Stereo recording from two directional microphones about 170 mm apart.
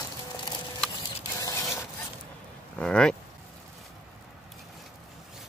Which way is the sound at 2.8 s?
5° left (ahead or behind).